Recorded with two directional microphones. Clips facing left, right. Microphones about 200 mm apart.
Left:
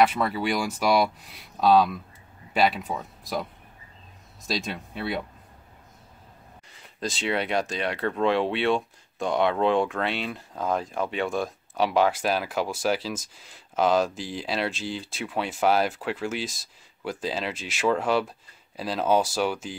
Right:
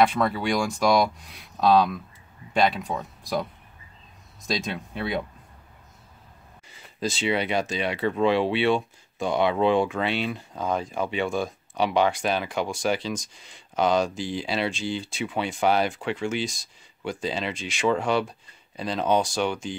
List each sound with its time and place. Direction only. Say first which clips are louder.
0.0 s speech: right 1 dB; 5° left (ahead or behind)
4.5 s speech: right 2 dB; centre (ahead or behind)
6.8 s speech: right 3 dB; centre (ahead or behind)